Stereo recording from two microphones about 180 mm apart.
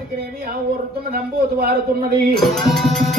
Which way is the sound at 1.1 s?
55° right (ahead or behind).